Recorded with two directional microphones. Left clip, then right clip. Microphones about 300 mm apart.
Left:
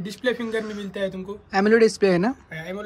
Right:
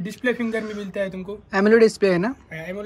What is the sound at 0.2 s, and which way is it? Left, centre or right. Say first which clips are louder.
A man's voice: right 1 dB; centre.